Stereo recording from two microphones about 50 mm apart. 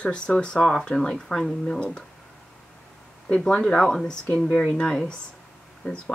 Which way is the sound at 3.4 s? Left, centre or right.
Centre.